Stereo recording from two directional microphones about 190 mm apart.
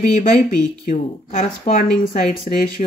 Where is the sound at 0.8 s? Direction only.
40° left (ahead or behind).